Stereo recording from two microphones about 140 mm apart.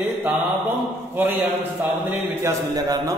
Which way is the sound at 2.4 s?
25° right (ahead or behind).